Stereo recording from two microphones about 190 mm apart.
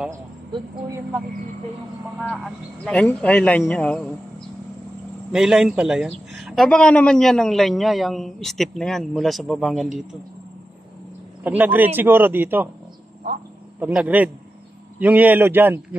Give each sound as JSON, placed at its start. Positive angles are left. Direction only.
{"t": 0.5, "sound": "a man's voice", "side_deg": -15}
{"t": 2.1, "sound": "a man's voice", "side_deg": 5}
{"t": 5.3, "sound": "a man's voice", "side_deg": 0}
{"t": 11.4, "sound": "a man's voice", "side_deg": -10}
{"t": 13.7, "sound": "a man's voice", "side_deg": -10}